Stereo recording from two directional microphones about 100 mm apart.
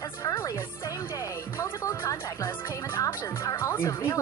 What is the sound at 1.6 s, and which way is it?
Music, 25° left (ahead or behind).